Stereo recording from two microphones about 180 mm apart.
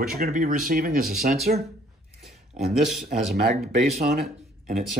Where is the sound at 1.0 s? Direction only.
Centre (ahead or behind).